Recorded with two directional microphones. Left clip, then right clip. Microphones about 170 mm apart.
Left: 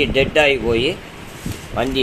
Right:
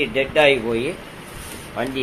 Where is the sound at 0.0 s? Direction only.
35° left (ahead or behind).